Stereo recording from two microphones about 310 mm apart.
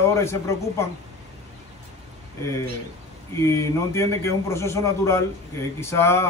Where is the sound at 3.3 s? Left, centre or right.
Centre.